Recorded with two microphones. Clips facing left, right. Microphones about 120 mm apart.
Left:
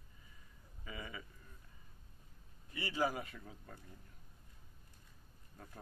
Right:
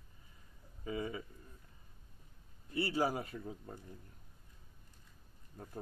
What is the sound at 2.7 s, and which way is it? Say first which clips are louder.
Speech: right 3 dB; 35° right (ahead or behind).